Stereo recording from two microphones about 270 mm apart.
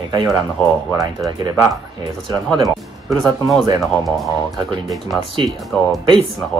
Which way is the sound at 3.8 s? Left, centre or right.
Centre.